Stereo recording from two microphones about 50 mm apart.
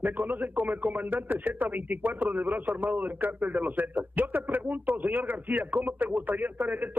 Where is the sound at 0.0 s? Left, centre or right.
Right.